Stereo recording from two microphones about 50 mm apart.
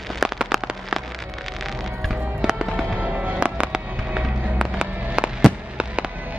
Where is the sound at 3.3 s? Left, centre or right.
Right.